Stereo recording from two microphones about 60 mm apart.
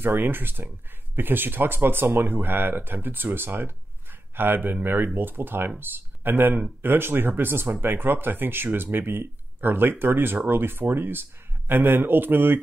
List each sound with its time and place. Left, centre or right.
0.0 s speech: right